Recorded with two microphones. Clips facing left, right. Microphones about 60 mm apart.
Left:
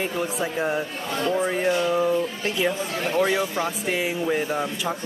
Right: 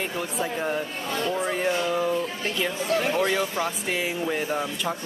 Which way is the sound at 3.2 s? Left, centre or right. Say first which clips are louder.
Left 2 dB; centre.